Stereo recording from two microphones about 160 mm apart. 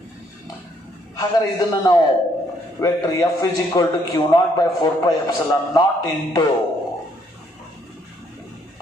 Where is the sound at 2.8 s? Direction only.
20° left (ahead or behind).